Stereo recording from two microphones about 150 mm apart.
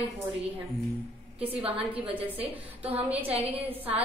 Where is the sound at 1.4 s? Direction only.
10° right (ahead or behind).